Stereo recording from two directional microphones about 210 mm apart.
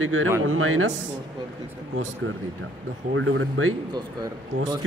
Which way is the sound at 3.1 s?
70° right (ahead or behind).